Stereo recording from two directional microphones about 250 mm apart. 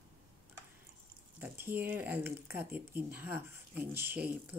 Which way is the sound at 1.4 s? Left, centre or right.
Centre.